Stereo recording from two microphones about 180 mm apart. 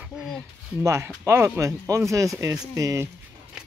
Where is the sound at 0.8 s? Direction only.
15° right (ahead or behind).